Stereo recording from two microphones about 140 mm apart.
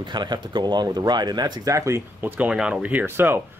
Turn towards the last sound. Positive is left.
turn(degrees=-15)  # may be behind; listen again after turning